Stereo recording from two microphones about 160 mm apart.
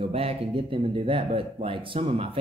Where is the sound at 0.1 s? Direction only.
35° right (ahead or behind).